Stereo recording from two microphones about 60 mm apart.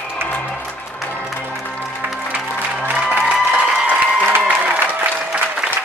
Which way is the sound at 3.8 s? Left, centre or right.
Right.